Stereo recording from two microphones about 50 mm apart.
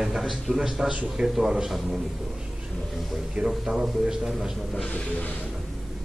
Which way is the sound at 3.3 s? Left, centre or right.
Centre.